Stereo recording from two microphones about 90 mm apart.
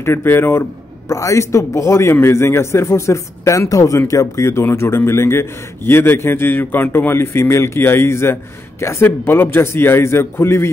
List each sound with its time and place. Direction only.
0.0 s a man's voice: 25° left (ahead or behind)